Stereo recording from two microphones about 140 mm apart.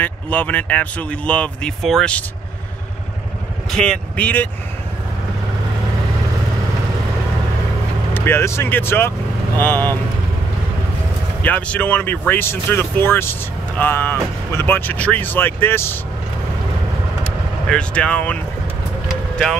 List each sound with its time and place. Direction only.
0.0 s speech: 10° left (ahead or behind)
3.7 s speech: 5° left (ahead or behind)
8.1 s speech: 15° left (ahead or behind)
11.4 s speech: 10° left (ahead or behind)
17.2 s vehicle: 5° left (ahead or behind)